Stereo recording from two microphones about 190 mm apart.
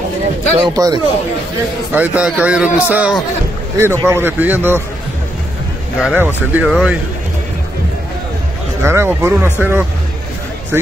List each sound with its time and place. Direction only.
0.6 s speech: 20° right (ahead or behind)
2.0 s a man's voice: 10° right (ahead or behind)
5.9 s a man's voice: 5° right (ahead or behind)
8.8 s a man's voice: 15° right (ahead or behind)